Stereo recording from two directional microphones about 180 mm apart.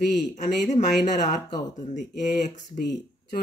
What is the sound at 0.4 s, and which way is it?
Speech, 40° left (ahead or behind).